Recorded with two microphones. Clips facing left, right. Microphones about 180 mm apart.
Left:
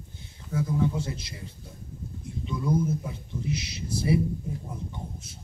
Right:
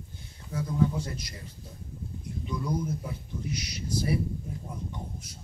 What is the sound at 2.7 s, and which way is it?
Speech, 25° left (ahead or behind).